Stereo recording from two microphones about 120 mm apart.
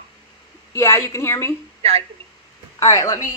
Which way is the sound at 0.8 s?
20° left (ahead or behind).